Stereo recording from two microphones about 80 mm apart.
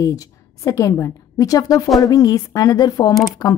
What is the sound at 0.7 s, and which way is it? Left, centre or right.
A woman's voice, left.